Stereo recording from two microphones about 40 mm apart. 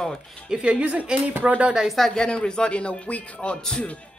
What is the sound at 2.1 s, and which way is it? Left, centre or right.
Speech, left.